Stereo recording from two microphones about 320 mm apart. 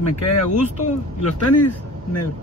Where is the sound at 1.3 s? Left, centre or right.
Left.